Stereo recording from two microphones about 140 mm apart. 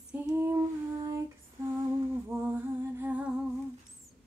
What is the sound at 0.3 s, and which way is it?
Female singing, 20° right (ahead or behind).